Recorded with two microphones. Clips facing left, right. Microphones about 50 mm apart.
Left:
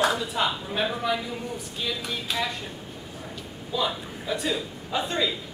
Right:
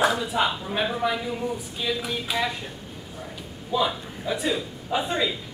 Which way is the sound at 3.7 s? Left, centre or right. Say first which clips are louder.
Right 3 dB; centre.